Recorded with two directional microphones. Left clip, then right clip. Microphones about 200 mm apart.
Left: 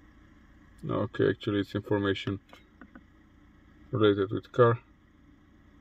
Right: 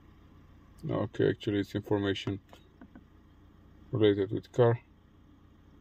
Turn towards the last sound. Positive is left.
turn(degrees=15)  # may be behind; listen again after turning